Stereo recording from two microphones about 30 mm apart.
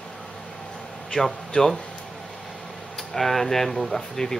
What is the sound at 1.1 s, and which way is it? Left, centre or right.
Speech, left.